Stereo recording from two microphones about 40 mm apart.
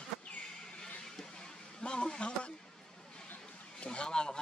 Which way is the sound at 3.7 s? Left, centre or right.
Left.